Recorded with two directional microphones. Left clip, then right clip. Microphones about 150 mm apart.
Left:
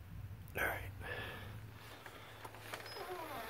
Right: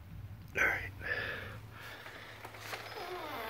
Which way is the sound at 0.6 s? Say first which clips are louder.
Right 8 dB; 25° left (ahead or behind).